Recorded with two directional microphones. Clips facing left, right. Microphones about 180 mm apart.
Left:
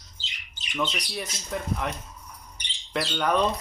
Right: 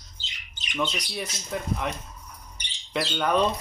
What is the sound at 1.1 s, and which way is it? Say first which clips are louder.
Speech: even; centre (ahead or behind).